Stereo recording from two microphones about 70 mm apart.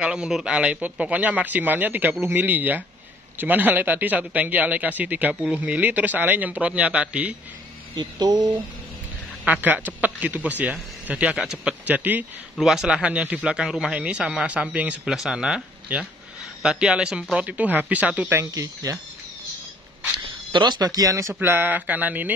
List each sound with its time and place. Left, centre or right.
0.0 s a man's voice: centre
5.3 s a man's voice: centre
5.6 s a man's voice: right
7.9 s speech: right
9.5 s a man's voice: right
11.3 s a man's voice: centre
11.8 s a man's voice: right
12.5 s a man's voice: centre
15.0 s a man's voice: centre
17.5 s a man's voice: right
18.3 s speech: right
20.6 s speech: right
21.4 s a man's voice: right